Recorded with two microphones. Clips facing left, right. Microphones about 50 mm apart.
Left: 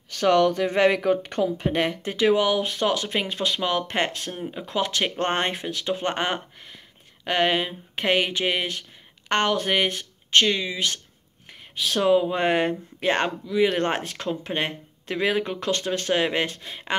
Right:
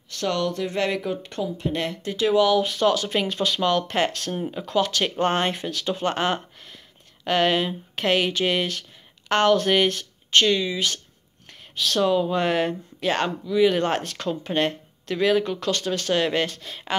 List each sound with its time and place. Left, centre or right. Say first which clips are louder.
0.2 s speech: left 6 dB; left
0.9 s speech: left 5 dB; left
5.6 s speech: right 1 dB; centre
11.7 s speech: left 1 dB; centre
13.0 s speech: even; left
14.1 s speech: right 2 dB; centre